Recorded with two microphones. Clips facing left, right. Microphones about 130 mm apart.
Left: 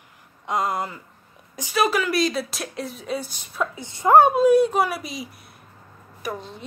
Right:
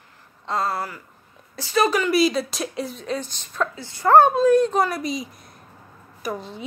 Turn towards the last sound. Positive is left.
turn(degrees=0)  # may be behind; listen again after turning